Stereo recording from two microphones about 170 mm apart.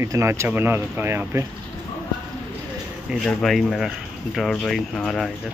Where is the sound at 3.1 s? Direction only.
Centre (ahead or behind).